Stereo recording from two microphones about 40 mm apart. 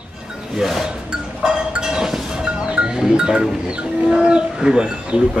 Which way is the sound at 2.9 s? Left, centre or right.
Centre.